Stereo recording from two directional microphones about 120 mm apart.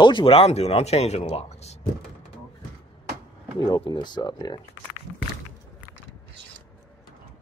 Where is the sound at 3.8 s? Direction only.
40° left (ahead or behind).